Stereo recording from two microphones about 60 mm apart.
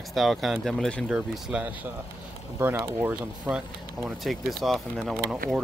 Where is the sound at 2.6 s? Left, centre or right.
Right.